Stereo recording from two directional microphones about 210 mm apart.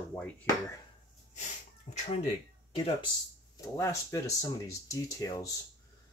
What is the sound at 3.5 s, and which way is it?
Speech, 15° left (ahead or behind).